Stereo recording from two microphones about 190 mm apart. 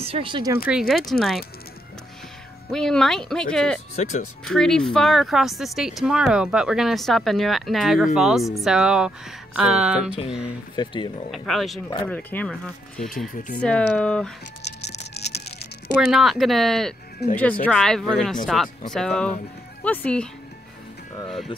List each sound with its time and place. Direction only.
0.0 s speech: 30° right (ahead or behind)
0.7 s speech: centre (ahead or behind)
2.7 s speech: 5° left (ahead or behind)
3.9 s speech: 40° left (ahead or behind)
4.5 s speech: 5° left (ahead or behind)
10.8 s speech: 25° left (ahead or behind)
11.3 s speech: centre (ahead or behind)
14.6 s music: 60° left (ahead or behind)
16.0 s speech: centre (ahead or behind)
17.2 s speech: 55° left (ahead or behind)
17.6 s speech: 5° left (ahead or behind)